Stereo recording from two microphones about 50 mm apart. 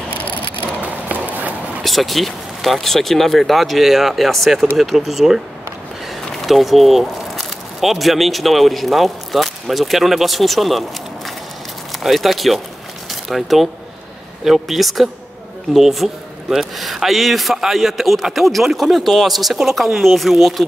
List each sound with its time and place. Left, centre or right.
0.6 s a sound: right
1.9 s a man's voice: centre
6.4 s a man's voice: centre